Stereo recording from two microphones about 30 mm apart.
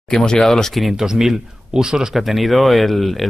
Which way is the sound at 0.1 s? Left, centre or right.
Left.